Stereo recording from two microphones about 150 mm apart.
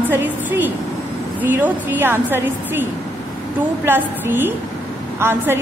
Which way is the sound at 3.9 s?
15° right (ahead or behind).